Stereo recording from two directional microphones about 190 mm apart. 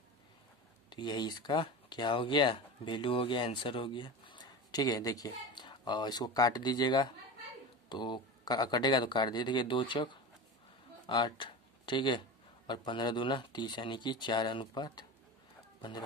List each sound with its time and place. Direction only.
0.8 s a man's voice: 25° left (ahead or behind)